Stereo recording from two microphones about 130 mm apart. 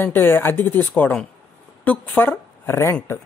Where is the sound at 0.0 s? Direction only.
15° left (ahead or behind).